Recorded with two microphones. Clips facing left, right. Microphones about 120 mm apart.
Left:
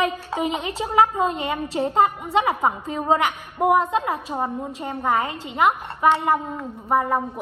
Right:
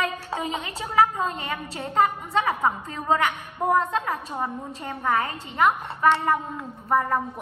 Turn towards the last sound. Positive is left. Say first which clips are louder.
# left 2 dB
turn(degrees=0)  # may be behind; listen again after turning